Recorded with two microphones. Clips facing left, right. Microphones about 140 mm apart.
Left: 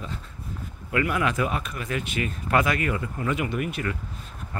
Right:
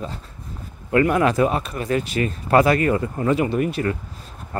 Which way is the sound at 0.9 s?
35° right (ahead or behind).